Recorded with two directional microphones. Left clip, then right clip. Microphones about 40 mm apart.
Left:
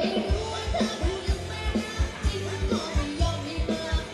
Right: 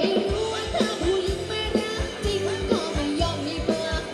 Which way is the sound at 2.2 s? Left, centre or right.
Right.